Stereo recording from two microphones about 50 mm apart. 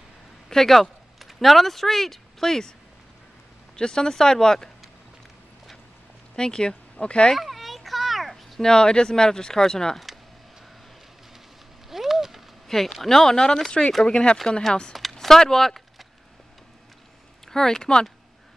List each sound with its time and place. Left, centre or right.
0.5 s speech: centre
3.7 s speech: centre
6.3 s speech: centre
7.3 s children playing: centre
8.5 s speech: centre
11.9 s a sound: centre
12.6 s speech: centre
15.0 s a sound: centre
17.5 s speech: centre